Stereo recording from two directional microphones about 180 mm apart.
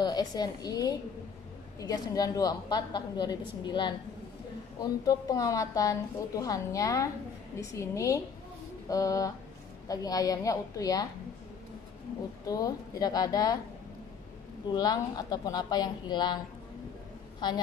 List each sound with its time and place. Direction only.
0.0 s a woman's voice: 20° left (ahead or behind)
12.4 s a woman's voice: 20° left (ahead or behind)
14.7 s a woman's voice: 20° left (ahead or behind)
17.4 s a woman's voice: 25° left (ahead or behind)